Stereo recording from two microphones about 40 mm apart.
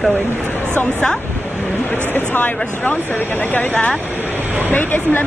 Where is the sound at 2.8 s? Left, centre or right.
Left.